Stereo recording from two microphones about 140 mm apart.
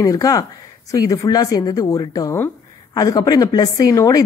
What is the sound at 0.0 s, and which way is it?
Speech, 25° left (ahead or behind).